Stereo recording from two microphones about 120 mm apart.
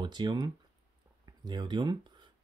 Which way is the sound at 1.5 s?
40° right (ahead or behind).